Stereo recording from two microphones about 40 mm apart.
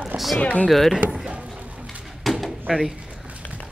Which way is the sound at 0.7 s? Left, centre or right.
Centre.